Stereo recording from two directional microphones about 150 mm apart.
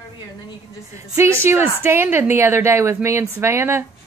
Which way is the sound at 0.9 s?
20° right (ahead or behind).